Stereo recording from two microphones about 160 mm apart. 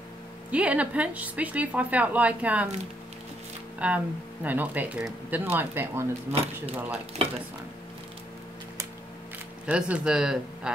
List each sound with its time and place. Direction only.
0.5 s speech: 10° right (ahead or behind)
3.8 s speech: 10° right (ahead or behind)
6.3 s speech: 40° right (ahead or behind)
6.7 s speech: 10° right (ahead or behind)
9.7 s speech: 5° right (ahead or behind)